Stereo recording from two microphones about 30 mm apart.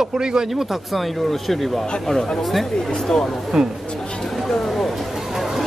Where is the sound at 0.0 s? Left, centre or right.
Right.